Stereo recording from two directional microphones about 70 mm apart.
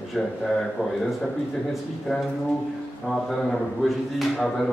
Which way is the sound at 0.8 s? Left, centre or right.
Left.